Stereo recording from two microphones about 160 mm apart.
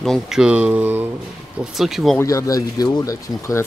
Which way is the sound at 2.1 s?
20° left (ahead or behind).